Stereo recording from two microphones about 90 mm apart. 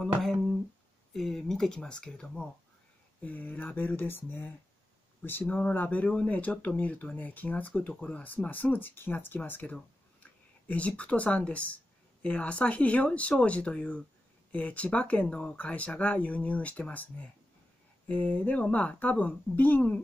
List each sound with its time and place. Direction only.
0.0 s humming: 5° left (ahead or behind)
1.1 s speech: 5° left (ahead or behind)